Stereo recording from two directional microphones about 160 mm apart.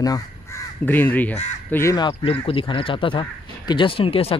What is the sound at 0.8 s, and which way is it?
Speech, 10° left (ahead or behind).